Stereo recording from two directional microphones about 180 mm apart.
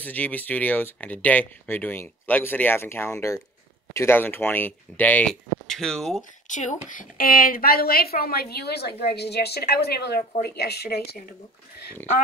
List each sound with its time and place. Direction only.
0.0 s speech: 10° left (ahead or behind)
6.5 s a woman's voice: 45° left (ahead or behind); by 11.1 s 60° left (ahead or behind)